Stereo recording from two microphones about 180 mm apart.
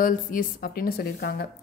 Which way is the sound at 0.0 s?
50° left (ahead or behind).